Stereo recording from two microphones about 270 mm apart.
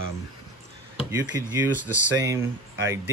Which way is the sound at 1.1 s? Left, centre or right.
Centre.